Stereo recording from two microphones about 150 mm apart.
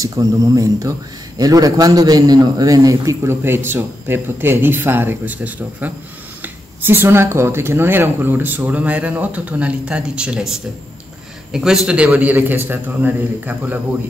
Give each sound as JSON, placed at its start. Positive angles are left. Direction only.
{"t": 0.0, "sound": "a man's voice", "side_deg": -25}